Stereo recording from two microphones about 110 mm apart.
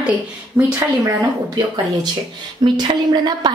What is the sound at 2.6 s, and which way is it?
Speech, 40° right (ahead or behind).